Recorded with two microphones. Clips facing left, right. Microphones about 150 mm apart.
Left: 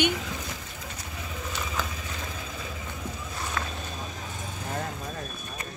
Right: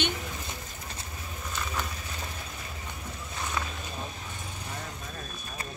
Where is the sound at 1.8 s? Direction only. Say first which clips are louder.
Left 5 dB; 90° left.